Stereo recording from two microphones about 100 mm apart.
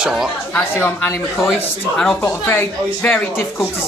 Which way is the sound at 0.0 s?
5° right (ahead or behind).